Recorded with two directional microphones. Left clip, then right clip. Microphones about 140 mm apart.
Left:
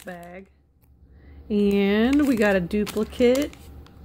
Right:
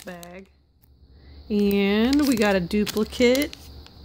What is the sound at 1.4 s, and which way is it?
Speech, 15° right (ahead or behind).